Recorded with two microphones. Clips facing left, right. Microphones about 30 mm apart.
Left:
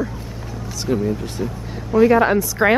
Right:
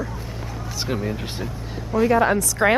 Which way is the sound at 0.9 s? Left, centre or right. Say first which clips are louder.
Left 7 dB; right.